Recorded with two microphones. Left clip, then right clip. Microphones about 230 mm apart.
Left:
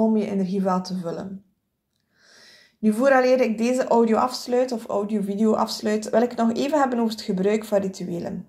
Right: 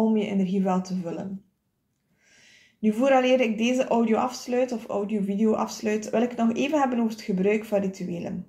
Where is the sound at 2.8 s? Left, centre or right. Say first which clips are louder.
Left 3 dB; left.